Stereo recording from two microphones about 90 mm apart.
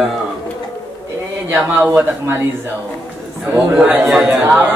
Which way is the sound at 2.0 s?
25° right (ahead or behind).